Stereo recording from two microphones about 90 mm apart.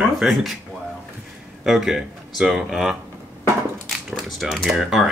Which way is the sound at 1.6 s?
5° right (ahead or behind).